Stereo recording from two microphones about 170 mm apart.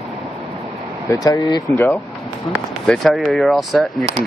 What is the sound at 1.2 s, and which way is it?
Speech, 20° left (ahead or behind).